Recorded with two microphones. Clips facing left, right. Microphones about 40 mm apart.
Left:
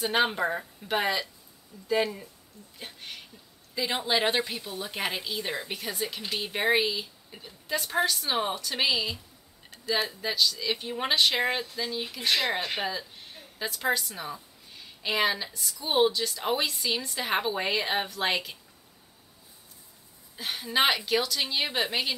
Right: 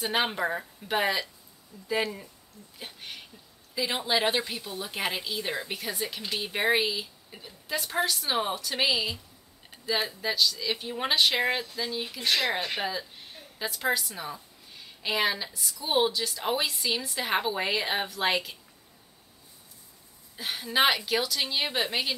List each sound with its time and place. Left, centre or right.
0.0 s speech: centre
20.3 s speech: centre